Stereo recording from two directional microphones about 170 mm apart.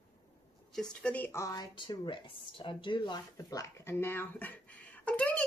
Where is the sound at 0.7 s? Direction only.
5° left (ahead or behind).